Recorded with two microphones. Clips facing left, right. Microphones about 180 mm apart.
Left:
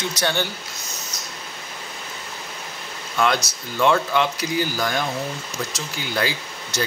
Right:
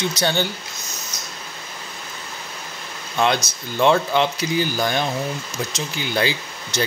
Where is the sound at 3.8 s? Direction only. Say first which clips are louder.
Right 2 dB; 30° right (ahead or behind).